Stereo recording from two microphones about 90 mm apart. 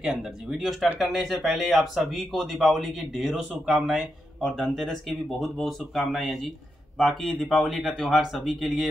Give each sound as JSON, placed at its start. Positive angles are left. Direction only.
{"t": 0.0, "sound": "speech", "side_deg": -5}